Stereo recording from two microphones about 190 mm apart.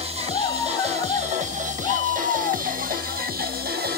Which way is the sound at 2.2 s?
45° right (ahead or behind).